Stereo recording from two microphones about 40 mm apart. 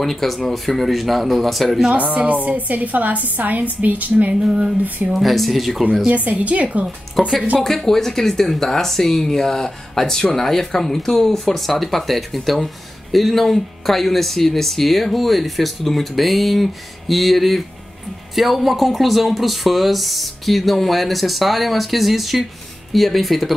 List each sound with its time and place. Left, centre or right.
0.0 s speech: centre
2.0 s a woman's voice: right
4.3 s a sound: centre
4.8 s speech: right
5.2 s speech: centre
6.0 s a woman's voice: right
7.2 s speech: centre